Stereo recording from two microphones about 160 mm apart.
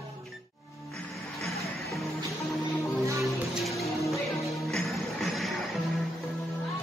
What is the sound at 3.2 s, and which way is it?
Music, centre (ahead or behind).